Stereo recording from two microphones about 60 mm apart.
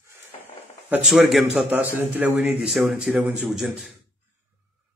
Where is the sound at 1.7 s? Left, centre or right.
Right.